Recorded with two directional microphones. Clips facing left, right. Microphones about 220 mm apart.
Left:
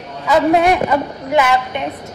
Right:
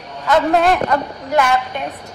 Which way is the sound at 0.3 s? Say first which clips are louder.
Left 2 dB; 10° left (ahead or behind).